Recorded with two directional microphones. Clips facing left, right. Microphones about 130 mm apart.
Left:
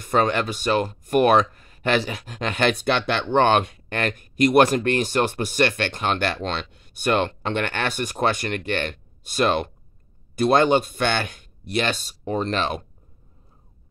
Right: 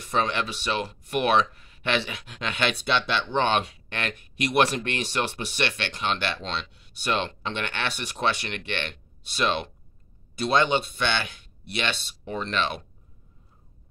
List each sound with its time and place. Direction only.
0.0 s speech: 50° left (ahead or behind)